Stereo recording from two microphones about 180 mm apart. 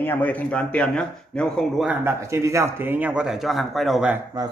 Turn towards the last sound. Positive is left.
turn(degrees=-5)  # may be behind; listen again after turning